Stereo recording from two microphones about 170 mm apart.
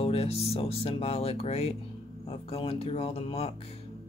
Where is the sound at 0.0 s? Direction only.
35° left (ahead or behind).